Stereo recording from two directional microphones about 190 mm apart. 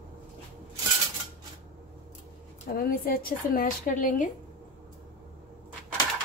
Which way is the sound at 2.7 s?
50° left (ahead or behind).